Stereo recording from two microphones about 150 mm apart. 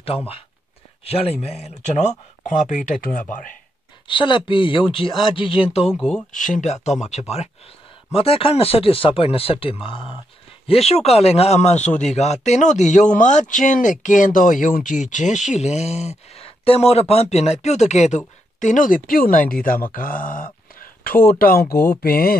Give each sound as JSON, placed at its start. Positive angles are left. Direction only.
{"t": 1.0, "sound": "speech", "side_deg": 40}
{"t": 4.1, "sound": "speech", "side_deg": 35}
{"t": 5.9, "sound": "speech", "side_deg": 5}
{"t": 6.3, "sound": "speech", "side_deg": 60}